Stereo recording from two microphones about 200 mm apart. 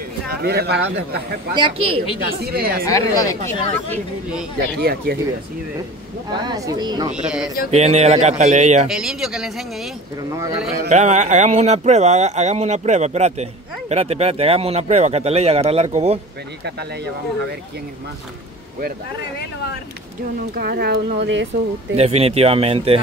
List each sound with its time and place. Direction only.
0.3 s speech: 55° right (ahead or behind)
1.5 s speech: 25° right (ahead or behind)
2.4 s speech: 50° right (ahead or behind)
2.8 s a woman's voice: 15° left (ahead or behind)
4.7 s speech: 50° right (ahead or behind)
6.4 s speech: 20° right (ahead or behind)
7.1 s speech: 5° right (ahead or behind)
7.7 s speech: 35° right (ahead or behind)
8.8 s speech: centre (ahead or behind)
10.3 s a man's voice: 15° right (ahead or behind)
10.9 s speech: 35° right (ahead or behind)
16.6 s speech: 55° right (ahead or behind)
20.5 s speech: 50° right (ahead or behind)
21.9 s speech: 30° right (ahead or behind)